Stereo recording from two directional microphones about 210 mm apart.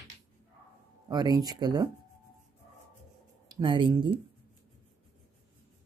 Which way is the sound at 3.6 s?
20° right (ahead or behind).